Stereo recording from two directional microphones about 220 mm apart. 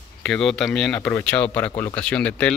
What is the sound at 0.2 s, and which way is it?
Speech, centre (ahead or behind).